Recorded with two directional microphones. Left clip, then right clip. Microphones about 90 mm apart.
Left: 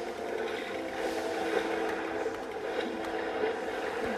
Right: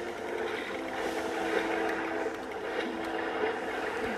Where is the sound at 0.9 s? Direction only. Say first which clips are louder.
Even; 5° right (ahead or behind).